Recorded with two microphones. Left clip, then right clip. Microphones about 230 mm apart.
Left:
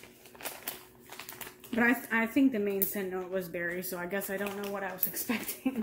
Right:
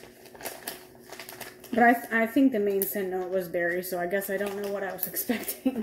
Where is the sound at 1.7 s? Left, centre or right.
Centre.